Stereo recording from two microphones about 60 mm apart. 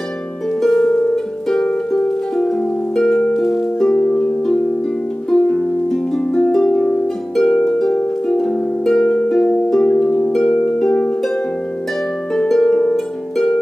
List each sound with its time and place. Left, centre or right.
0.6 s harp: centre
0.9 s music: centre
2.4 s harp: centre
4.0 s harp: left
5.3 s music: centre
6.7 s harp: centre
10.9 s harp: left
12.4 s harp: centre